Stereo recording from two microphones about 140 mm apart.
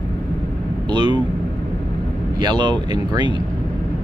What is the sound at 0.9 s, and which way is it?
Speech, 30° right (ahead or behind).